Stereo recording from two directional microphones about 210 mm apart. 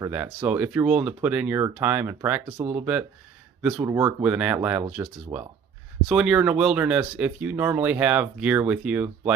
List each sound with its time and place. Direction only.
0.0 s speech: 10° right (ahead or behind)
2.8 s speech: 5° right (ahead or behind)